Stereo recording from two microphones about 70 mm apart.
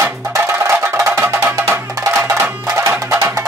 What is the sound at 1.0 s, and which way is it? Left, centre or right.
Music, right.